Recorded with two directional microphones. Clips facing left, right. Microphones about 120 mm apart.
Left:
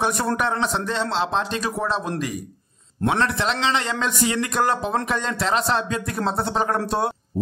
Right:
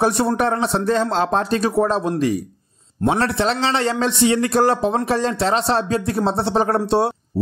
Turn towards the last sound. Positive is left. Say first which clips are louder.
# right 5 dB
turn(degrees=-30)  # may be behind; listen again after turning